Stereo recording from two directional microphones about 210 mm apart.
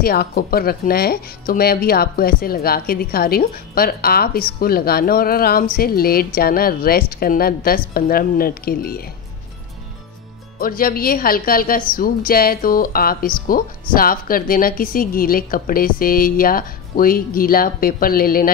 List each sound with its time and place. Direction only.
0.0 s speech: 45° left (ahead or behind)
10.6 s speech: 45° left (ahead or behind)